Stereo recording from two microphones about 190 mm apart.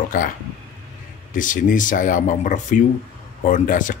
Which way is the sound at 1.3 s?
45° left (ahead or behind).